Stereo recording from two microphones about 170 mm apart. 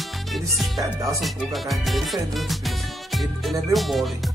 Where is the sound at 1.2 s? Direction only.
Centre (ahead or behind).